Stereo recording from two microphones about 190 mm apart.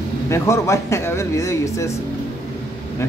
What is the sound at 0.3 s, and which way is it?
Speech, 15° left (ahead or behind).